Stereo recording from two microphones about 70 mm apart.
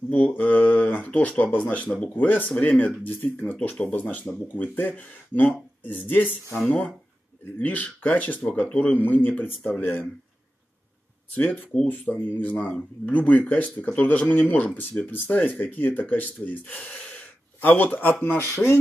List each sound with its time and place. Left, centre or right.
0.1 s speech: left
3.5 s speech: centre
3.8 s speech: left
7.5 s speech: left
11.3 s speech: left
11.7 s speech: centre
12.0 s speech: left
18.4 s dishes: left